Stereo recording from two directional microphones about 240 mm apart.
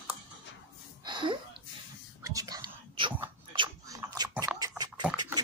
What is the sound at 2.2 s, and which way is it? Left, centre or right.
Whispering, centre.